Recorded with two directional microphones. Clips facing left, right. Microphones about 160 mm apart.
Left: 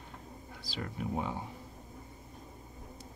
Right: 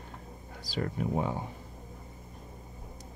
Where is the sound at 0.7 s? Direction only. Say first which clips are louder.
Right 5 dB; 50° right (ahead or behind).